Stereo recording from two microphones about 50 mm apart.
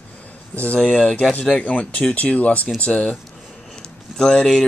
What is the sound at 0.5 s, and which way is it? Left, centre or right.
Speech, left.